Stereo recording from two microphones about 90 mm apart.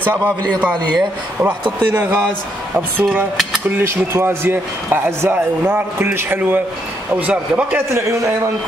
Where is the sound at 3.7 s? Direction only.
25° right (ahead or behind).